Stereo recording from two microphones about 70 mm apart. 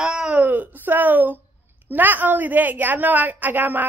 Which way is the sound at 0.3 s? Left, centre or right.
Right.